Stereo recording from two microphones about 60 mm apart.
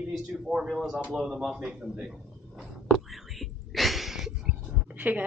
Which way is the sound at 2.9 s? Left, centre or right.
Centre.